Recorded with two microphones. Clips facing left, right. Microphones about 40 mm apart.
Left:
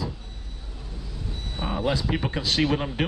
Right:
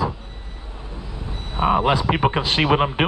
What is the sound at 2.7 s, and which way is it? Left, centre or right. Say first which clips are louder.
Speech: right 8 dB; right.